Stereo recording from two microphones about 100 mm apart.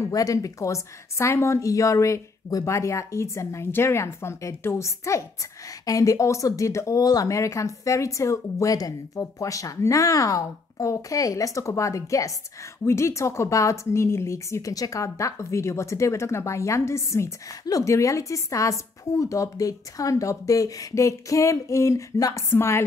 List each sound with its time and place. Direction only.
0.0 s speech: 35° left (ahead or behind)